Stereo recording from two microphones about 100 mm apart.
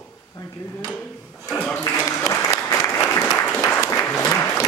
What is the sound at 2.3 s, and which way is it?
Applause, 25° left (ahead or behind).